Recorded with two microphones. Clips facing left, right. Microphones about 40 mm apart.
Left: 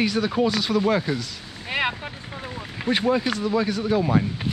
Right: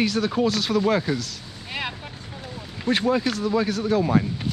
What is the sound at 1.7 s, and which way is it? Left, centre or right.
Vehicle, left.